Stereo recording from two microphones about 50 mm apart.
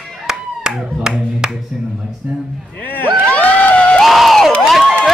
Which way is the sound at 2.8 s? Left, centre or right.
Left.